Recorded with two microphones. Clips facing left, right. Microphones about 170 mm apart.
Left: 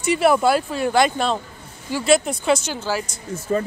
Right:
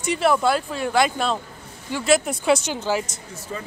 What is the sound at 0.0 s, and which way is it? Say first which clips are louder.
Speech: left 3 dB; 5° left (ahead or behind).